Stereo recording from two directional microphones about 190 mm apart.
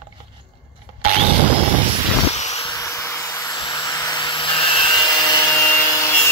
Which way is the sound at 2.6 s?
15° left (ahead or behind).